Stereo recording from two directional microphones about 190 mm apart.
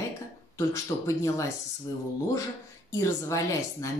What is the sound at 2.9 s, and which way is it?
Speech, 15° left (ahead or behind).